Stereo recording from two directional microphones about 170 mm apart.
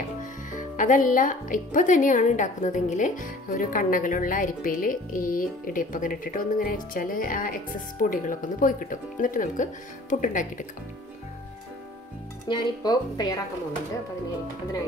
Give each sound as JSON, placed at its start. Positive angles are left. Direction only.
{"t": 0.2, "sound": "speech", "side_deg": 50}
{"t": 12.4, "sound": "speech", "side_deg": 25}